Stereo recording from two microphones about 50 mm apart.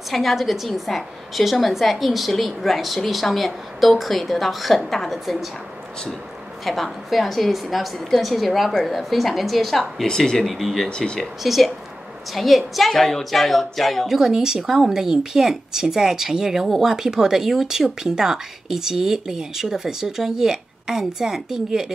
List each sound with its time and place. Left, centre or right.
0.1 s a woman's voice: centre
6.6 s a woman's voice: centre
10.9 s speech: centre
11.4 s a woman's voice: centre
14.0 s speech: centre